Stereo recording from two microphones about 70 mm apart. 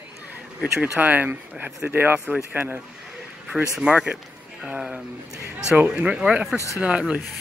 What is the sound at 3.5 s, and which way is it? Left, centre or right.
Speech, centre.